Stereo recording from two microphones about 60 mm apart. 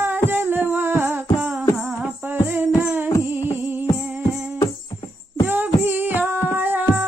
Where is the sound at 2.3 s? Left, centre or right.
Right.